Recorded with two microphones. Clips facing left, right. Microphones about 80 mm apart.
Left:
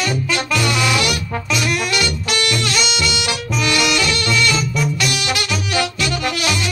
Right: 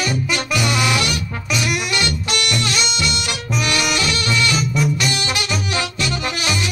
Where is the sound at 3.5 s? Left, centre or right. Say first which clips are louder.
Left 2 dB; right.